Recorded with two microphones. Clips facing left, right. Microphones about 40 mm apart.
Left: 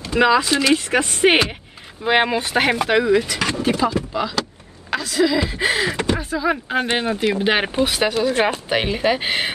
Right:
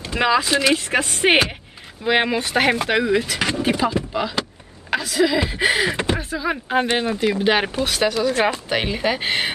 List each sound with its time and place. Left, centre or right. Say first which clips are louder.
0.1 s speech: left 2 dB; centre
1.2 s speech: left 1 dB; centre
2.0 s speech: left 1 dB; centre
3.3 s speech: left 1 dB; centre
4.9 s a sound: even; centre
5.2 s speech: even; centre
6.1 s speech: left 3 dB; centre
6.9 s speech: even; left
7.4 s speech: left 1 dB; centre
8.1 s speech: left 1 dB; left
8.6 s speech: left 2 dB; centre